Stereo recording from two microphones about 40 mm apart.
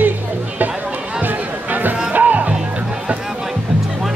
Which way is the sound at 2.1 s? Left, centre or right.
Right.